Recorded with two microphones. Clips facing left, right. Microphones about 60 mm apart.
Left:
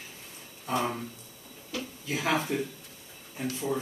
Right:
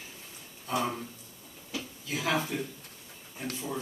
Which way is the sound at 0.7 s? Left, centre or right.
Centre.